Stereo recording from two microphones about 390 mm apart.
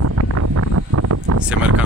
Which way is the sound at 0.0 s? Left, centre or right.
Right.